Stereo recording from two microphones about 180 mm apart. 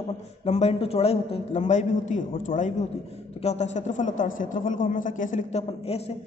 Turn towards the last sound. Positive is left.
turn(degrees=35)  # may be behind; listen again after turning